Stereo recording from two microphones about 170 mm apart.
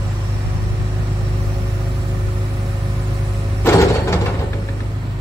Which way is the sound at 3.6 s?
15° left (ahead or behind).